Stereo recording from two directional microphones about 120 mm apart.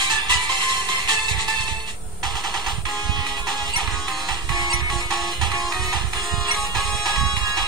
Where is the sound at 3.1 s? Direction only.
35° right (ahead or behind).